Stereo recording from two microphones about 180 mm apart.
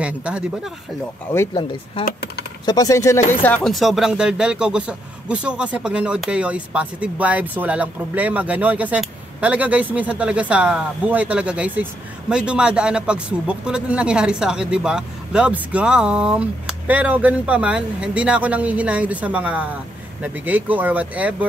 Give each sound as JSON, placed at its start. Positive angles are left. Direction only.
{"t": 0.0, "sound": "a man's voice", "side_deg": -5}
{"t": 1.3, "sound": "speech", "side_deg": 15}
{"t": 2.6, "sound": "speech", "side_deg": 20}
{"t": 3.4, "sound": "a man's voice", "side_deg": 5}